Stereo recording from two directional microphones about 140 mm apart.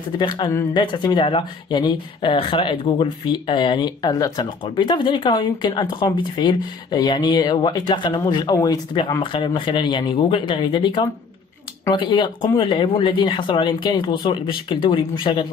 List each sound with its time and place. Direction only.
0.2 s speech: 35° left (ahead or behind)